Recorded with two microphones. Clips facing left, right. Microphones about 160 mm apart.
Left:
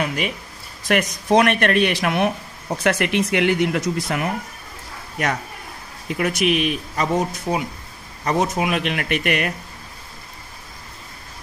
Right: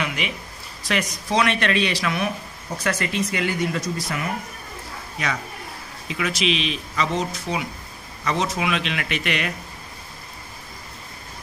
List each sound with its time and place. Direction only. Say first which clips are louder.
0.0 s speech: left 4 dB; 45° left (ahead or behind)
0.8 s speech: left 6 dB; 55° left (ahead or behind)
6.0 s speech: left 4 dB; 50° left (ahead or behind)